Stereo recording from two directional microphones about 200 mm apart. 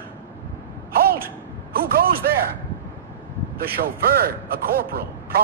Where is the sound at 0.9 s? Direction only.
50° right (ahead or behind).